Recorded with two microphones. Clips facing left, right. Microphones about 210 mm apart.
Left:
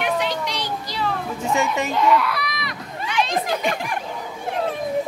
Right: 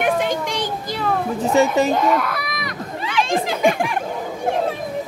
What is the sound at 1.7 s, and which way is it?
A woman's voice, 45° right (ahead or behind).